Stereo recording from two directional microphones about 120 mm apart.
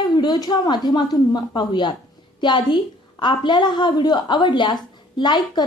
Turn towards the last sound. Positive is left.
turn(degrees=35)  # may be behind; listen again after turning